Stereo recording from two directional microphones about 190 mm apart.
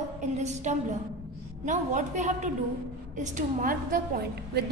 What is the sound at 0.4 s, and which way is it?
A woman's voice, 35° right (ahead or behind).